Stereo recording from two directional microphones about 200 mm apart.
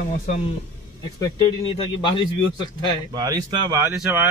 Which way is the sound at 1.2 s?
20° left (ahead or behind).